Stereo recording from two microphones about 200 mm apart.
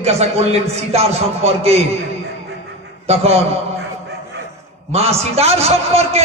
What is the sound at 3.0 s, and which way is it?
Speech, 30° right (ahead or behind).